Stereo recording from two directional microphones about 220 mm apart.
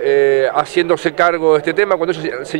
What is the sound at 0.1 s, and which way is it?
Speech, 20° right (ahead or behind).